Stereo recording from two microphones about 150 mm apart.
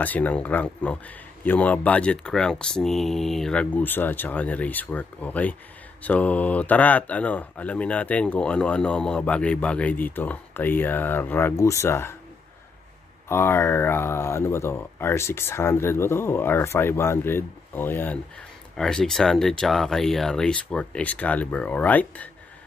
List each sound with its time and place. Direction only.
0.0 s speech: 10° left (ahead or behind)
13.3 s speech: 15° left (ahead or behind)